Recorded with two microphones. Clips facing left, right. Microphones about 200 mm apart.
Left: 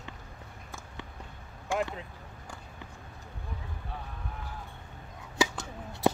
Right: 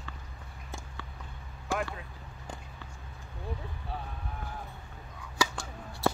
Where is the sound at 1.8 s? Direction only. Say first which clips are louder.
Left 3 dB; 20° left (ahead or behind).